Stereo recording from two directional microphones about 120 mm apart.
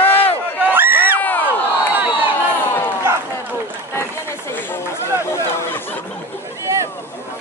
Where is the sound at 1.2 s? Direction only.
15° left (ahead or behind).